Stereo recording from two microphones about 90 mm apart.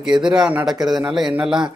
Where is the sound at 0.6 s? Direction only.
5° right (ahead or behind).